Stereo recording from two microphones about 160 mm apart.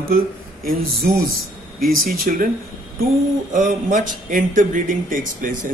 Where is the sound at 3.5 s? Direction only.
55° right (ahead or behind).